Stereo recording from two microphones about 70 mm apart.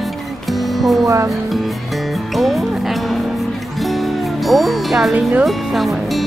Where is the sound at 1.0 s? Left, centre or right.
Right.